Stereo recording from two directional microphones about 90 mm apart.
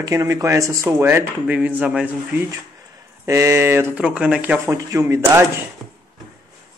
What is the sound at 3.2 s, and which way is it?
Speech, 35° right (ahead or behind).